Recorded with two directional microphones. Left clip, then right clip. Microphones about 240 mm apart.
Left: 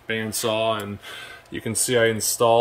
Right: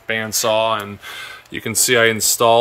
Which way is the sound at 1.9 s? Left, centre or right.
Right.